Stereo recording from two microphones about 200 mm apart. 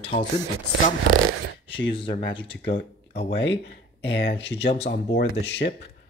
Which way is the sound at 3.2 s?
60° left (ahead or behind).